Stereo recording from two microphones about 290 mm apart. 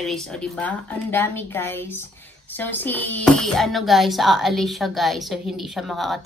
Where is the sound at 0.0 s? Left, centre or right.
Centre.